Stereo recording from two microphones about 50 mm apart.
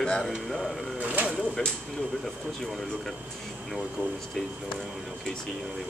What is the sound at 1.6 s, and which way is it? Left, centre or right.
Speech, centre.